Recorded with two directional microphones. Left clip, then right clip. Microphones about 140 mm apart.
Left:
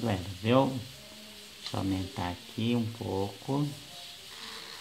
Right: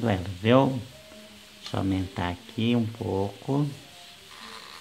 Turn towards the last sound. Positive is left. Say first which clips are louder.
# right 4 dB
turn(degrees=-30)  # may be behind; listen again after turning